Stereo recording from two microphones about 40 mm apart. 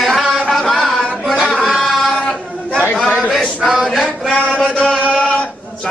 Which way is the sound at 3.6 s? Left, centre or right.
Centre.